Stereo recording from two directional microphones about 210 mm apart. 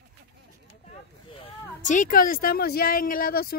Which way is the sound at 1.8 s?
35° left (ahead or behind).